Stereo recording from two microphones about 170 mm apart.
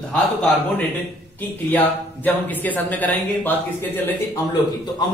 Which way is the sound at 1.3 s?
10° left (ahead or behind).